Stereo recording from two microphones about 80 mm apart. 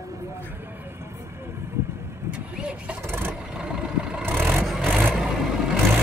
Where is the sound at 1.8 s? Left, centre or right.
Right.